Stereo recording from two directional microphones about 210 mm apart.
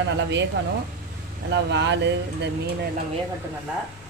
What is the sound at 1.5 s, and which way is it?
Speech, 55° right (ahead or behind).